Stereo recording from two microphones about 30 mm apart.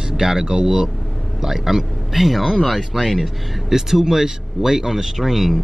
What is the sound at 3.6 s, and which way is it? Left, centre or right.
A man's voice, centre.